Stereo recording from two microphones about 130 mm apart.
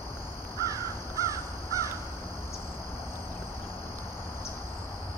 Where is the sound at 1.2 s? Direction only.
25° right (ahead or behind).